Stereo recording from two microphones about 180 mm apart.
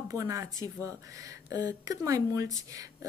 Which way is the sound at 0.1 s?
20° right (ahead or behind).